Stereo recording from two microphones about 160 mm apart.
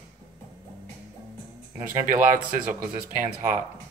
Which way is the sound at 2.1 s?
55° right (ahead or behind).